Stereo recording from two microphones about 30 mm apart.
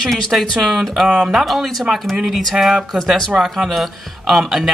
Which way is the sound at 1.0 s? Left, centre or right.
Right.